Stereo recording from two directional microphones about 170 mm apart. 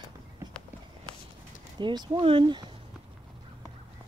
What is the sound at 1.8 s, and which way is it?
Speech, 25° right (ahead or behind).